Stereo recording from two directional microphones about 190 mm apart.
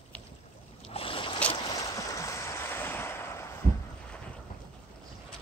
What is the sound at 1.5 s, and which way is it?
Waves, 25° left (ahead or behind).